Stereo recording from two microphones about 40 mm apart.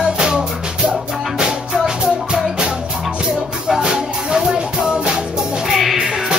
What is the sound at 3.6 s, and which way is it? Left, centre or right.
Music, centre.